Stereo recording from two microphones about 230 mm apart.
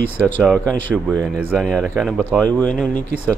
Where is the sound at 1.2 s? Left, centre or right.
Centre.